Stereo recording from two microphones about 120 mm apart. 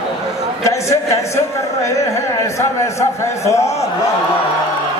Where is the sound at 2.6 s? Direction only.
25° left (ahead or behind).